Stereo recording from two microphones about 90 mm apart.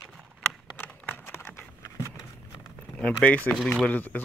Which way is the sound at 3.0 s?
15° left (ahead or behind).